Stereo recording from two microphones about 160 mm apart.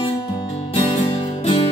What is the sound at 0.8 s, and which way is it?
Music, 35° left (ahead or behind).